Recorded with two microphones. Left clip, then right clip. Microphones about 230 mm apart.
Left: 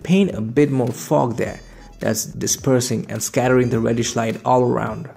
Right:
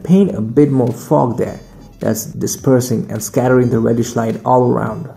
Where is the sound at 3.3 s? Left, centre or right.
Left.